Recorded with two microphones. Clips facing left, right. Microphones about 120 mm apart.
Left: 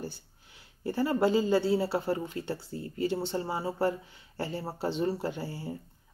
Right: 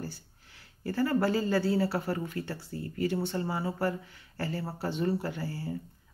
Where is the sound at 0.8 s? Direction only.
20° left (ahead or behind).